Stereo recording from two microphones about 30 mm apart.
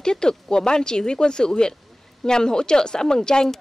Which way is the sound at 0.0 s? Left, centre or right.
Left.